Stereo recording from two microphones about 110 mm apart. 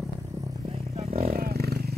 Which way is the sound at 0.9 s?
65° right (ahead or behind).